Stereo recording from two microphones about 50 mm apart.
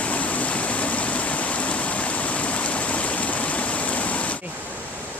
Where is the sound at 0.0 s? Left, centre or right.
Left.